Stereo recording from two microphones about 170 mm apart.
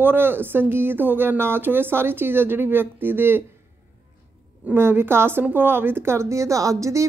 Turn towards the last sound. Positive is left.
turn(degrees=-20)  # may be behind; listen again after turning